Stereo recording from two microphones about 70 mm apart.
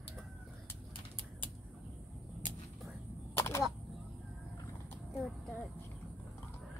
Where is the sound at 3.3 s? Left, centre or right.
Left.